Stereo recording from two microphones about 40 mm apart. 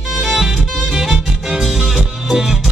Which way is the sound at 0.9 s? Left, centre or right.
Centre.